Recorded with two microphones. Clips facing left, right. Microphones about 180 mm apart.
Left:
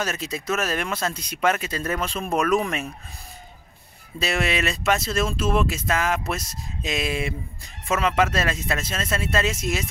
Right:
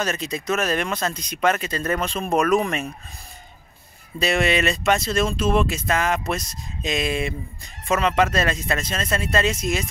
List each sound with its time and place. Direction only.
0.0 s speech: 5° left (ahead or behind)
4.2 s speech: centre (ahead or behind)